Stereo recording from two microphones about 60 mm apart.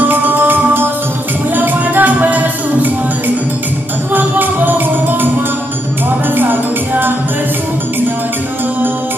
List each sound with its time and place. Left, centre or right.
0.0 s music: right
4.1 s music: right
6.3 s music: right